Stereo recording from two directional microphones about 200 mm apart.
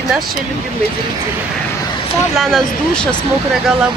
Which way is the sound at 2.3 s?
Centre (ahead or behind).